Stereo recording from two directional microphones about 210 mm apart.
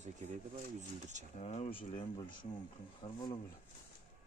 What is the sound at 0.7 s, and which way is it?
Speech, 35° right (ahead or behind).